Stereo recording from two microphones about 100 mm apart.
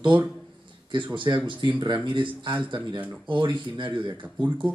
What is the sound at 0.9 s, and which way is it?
Speech, 55° right (ahead or behind).